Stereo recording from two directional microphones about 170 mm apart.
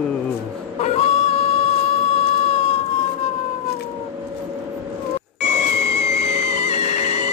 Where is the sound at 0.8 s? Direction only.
40° left (ahead or behind).